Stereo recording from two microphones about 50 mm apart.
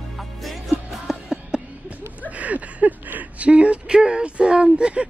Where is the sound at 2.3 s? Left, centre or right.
Right.